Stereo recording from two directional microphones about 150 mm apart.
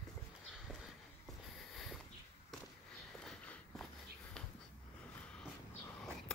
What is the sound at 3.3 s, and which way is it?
Walk, 5° left (ahead or behind).